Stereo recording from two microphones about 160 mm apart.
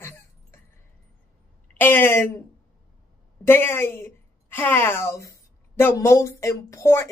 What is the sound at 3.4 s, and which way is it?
A woman's voice, 15° left (ahead or behind).